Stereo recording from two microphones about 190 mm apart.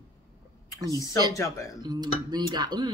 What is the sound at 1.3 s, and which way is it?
Speech, 15° left (ahead or behind).